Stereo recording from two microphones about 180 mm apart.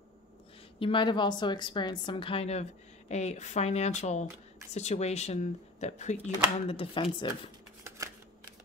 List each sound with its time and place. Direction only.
0.7 s a woman's voice: 30° left (ahead or behind)